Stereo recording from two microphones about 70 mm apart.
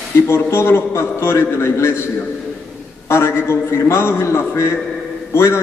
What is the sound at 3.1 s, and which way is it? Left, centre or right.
A man's voice, left.